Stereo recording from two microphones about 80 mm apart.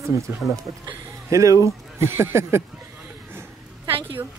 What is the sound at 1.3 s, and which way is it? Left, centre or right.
Speech, right.